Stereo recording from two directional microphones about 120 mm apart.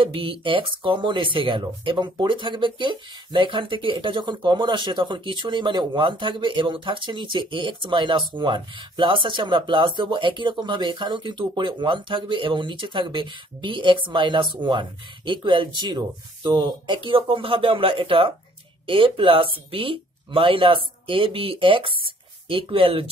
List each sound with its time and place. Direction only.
0.0 s speech: 45° right (ahead or behind)